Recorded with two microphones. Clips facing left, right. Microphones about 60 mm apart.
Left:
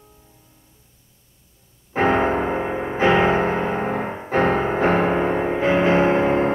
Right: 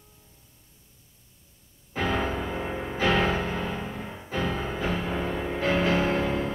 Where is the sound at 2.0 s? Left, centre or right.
Left.